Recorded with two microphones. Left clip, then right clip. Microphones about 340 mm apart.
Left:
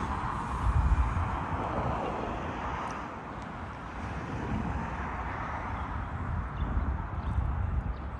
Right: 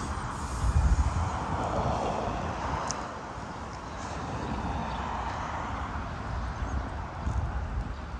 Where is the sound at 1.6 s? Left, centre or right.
Right.